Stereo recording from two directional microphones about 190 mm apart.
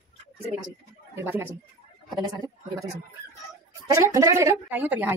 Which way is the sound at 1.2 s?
10° right (ahead or behind).